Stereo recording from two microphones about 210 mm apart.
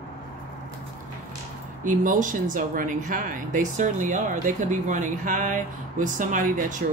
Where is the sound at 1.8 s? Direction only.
40° right (ahead or behind).